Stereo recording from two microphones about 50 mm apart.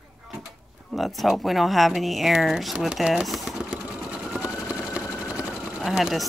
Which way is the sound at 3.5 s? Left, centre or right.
Centre.